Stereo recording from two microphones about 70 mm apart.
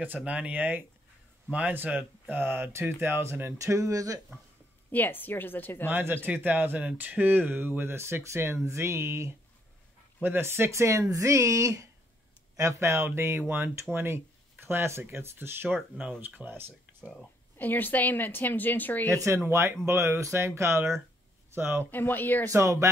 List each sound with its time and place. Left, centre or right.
0.2 s speech: centre; by 4.2 s right
4.9 s a woman's voice: left
5.9 s speech: right
17.0 s speech: centre
17.6 s a woman's voice: left
19.0 s speech: right
21.9 s a woman's voice: left
22.5 s speech: right